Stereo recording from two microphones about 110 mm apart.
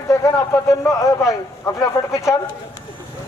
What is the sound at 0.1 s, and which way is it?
A man's voice, 30° left (ahead or behind).